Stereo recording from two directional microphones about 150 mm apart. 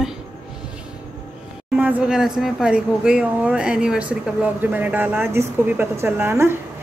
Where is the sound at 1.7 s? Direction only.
10° right (ahead or behind).